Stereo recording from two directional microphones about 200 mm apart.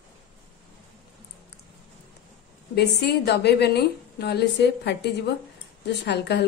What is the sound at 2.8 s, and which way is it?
A woman's voice, 55° left (ahead or behind).